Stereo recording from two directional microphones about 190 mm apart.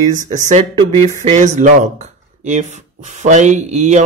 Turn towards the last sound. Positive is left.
turn(degrees=-35)  # may be behind; listen again after turning